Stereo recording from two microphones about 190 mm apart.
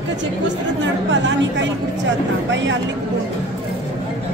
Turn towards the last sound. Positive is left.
turn(degrees=-75)  # may be behind; listen again after turning